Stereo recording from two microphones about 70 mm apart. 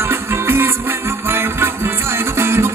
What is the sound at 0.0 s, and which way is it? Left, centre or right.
Music, right.